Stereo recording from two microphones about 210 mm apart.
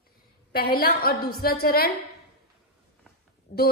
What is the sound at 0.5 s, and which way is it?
Mantra, 45° left (ahead or behind).